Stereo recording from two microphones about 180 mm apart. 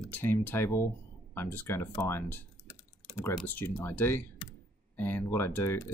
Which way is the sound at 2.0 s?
15° left (ahead or behind).